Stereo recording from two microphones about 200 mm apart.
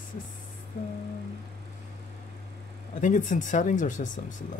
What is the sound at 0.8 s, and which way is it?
Speech, 40° left (ahead or behind).